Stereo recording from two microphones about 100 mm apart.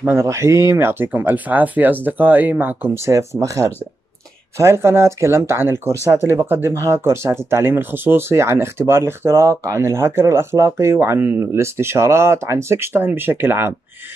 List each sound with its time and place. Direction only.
0.0 s speech: 25° right (ahead or behind)
3.1 s speech: 30° right (ahead or behind)